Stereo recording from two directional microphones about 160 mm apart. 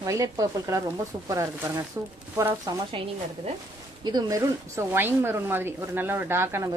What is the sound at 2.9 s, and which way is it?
Speech, 35° right (ahead or behind).